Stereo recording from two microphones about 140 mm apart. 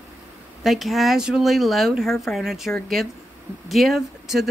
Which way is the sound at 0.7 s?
Centre (ahead or behind).